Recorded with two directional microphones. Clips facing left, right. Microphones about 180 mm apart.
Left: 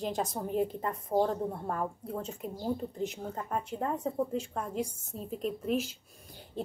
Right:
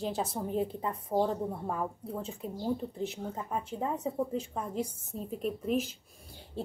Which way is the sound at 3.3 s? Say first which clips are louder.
Left 1 dB; 5° right (ahead or behind).